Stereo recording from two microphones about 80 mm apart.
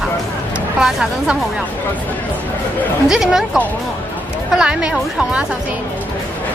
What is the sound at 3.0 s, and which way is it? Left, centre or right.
Speech, centre.